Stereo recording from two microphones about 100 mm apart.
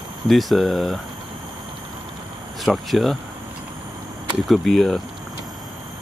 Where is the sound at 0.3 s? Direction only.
Centre (ahead or behind).